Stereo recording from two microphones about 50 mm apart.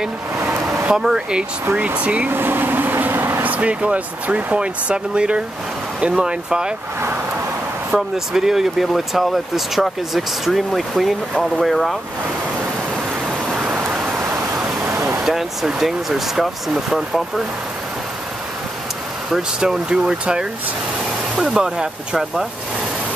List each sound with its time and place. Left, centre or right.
0.9 s speech: centre
2.0 s speech: right
2.3 s vehicle: right
3.4 s speech: right
4.6 s speech: centre
7.9 s speech: centre
15.2 s speech: centre
19.3 s speech: centre
21.5 s speech: centre